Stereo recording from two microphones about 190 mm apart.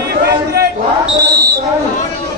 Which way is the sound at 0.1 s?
55° right (ahead or behind).